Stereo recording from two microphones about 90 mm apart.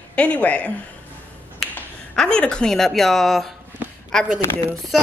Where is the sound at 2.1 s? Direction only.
10° left (ahead or behind).